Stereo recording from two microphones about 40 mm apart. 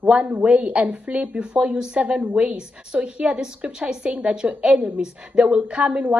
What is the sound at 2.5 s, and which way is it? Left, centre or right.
A woman's voice, right.